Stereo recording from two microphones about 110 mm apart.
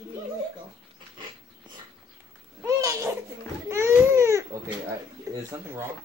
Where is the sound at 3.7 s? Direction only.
25° right (ahead or behind).